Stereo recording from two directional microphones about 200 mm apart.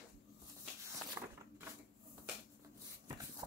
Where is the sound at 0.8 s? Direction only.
10° right (ahead or behind).